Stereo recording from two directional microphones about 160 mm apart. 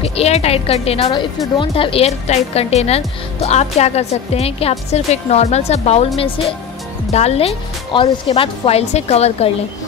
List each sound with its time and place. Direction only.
0.0 s speech: 40° left (ahead or behind)